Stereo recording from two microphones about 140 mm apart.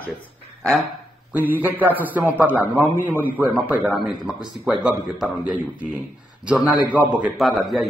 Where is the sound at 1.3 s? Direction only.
10° right (ahead or behind).